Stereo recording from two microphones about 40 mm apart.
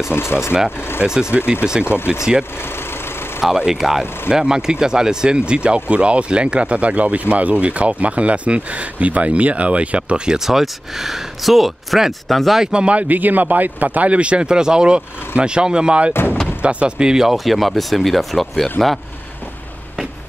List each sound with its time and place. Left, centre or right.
0.3 s speech: left
1.0 s speech: right
10.4 s speech: centre
12.7 s speech: right
13.1 s speech: right
16.1 s speech: left
16.6 s speech: right
17.1 s speech: centre
17.5 s speech: centre